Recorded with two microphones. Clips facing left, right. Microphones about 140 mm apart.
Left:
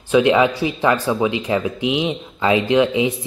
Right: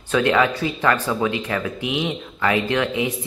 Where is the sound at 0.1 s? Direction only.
15° left (ahead or behind).